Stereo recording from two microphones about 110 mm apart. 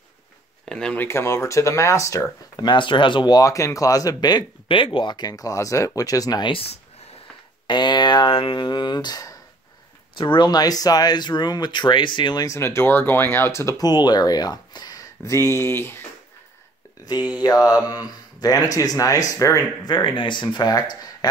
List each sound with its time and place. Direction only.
0.7 s speech: 5° left (ahead or behind)
1.0 s speech: 25° left (ahead or behind)
2.5 s speech: 45° left (ahead or behind)
6.5 s speech: 65° left (ahead or behind)
7.6 s speech: 45° left (ahead or behind)
10.1 s speech: 45° left (ahead or behind)
12.5 s speech: 25° left (ahead or behind)
17.3 s speech: 35° left (ahead or behind)